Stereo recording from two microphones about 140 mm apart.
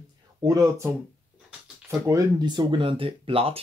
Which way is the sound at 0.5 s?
20° right (ahead or behind).